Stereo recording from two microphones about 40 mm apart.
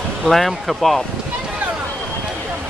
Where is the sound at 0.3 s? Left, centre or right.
Centre.